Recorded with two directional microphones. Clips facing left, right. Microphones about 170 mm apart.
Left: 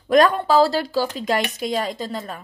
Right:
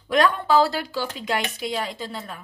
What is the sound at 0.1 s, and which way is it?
Speech, 40° left (ahead or behind).